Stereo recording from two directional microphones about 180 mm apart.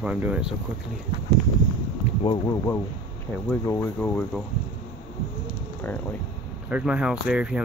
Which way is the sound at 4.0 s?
5° left (ahead or behind).